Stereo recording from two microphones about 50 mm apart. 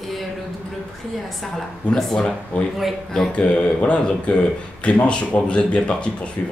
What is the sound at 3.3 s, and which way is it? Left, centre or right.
Speech, left.